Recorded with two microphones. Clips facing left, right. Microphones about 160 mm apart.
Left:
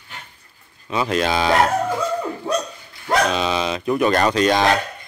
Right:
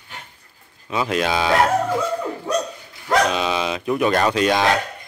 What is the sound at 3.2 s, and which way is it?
Speech, 5° right (ahead or behind).